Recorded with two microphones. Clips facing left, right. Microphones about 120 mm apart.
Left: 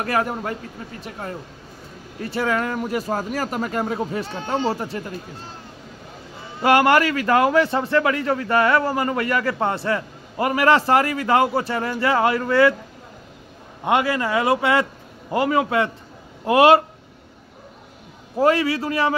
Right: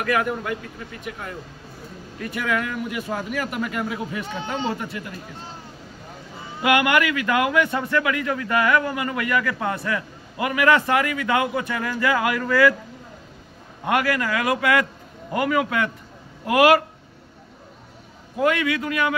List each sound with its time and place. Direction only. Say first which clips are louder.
0.0 s a man's voice: even; 35° left (ahead or behind)
6.6 s a man's voice: left 3 dB; 35° left (ahead or behind)
13.8 s a man's voice: left 2 dB; 25° left (ahead or behind)
18.4 s a man's voice: left 3 dB; 35° left (ahead or behind)